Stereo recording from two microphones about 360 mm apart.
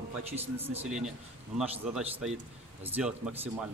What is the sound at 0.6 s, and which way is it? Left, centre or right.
Speech, centre.